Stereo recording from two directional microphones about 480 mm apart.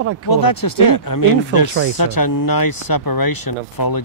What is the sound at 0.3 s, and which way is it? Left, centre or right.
Speech, left.